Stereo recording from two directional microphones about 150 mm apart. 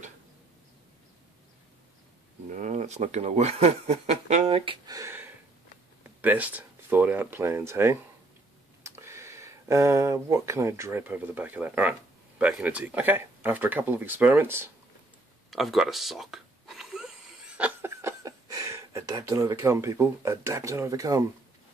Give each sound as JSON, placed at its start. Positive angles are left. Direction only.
{"t": 2.5, "sound": "speech", "side_deg": -50}
{"t": 4.8, "sound": "speech", "side_deg": -20}
{"t": 15.5, "sound": "a sound", "side_deg": 0}
{"t": 17.6, "sound": "speech", "side_deg": -15}